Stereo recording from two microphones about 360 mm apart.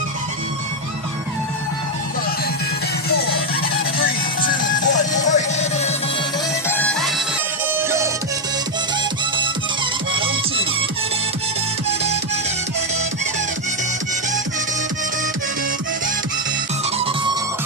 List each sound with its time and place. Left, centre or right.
3.7 s music: left
6.7 s music: centre